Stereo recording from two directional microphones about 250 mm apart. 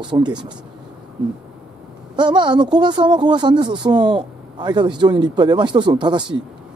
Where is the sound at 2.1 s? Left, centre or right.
Centre.